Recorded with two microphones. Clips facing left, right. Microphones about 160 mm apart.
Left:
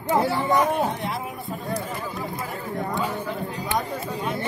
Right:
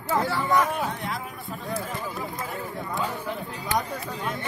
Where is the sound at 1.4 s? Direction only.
Centre (ahead or behind).